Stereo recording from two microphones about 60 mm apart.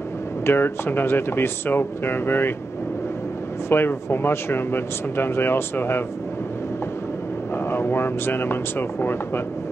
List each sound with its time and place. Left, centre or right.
0.5 s speech: left
3.6 s speech: left
7.7 s speech: left